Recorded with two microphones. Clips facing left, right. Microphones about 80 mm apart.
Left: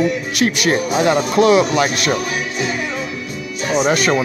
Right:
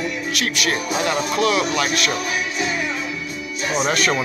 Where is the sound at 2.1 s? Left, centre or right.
Left.